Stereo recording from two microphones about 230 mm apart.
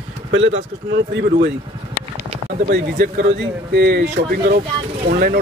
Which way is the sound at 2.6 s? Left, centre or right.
Right.